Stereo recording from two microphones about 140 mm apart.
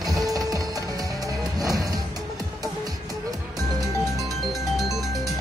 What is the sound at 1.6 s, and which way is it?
Music, 25° right (ahead or behind).